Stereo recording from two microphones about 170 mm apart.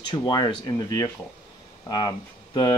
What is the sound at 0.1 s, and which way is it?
Speech, 25° left (ahead or behind).